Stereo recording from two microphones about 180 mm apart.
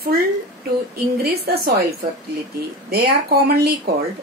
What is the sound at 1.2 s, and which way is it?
Speech, 60° right (ahead or behind).